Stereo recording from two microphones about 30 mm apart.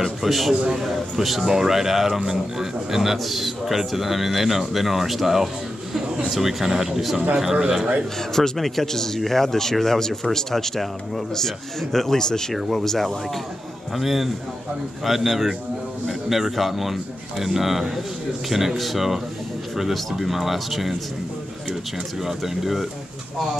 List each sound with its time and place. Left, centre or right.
0.0 s speech: centre
8.3 s speech: centre
12.5 s speech: centre
13.9 s speech: centre
18.8 s speech: centre
22.2 s speech: centre